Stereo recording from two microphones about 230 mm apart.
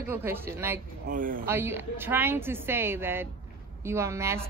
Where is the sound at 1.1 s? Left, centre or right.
Right.